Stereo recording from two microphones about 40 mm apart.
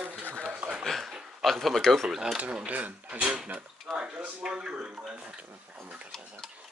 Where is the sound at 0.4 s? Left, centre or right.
Right.